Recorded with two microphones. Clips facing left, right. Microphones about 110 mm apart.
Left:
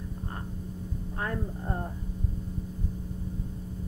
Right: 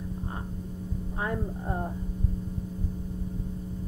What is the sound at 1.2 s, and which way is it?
Speech, 10° right (ahead or behind).